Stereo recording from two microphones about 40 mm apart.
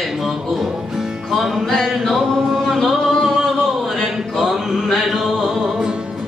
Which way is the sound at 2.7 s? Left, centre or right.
Centre.